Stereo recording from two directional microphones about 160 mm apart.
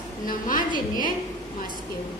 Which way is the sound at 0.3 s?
60° left (ahead or behind).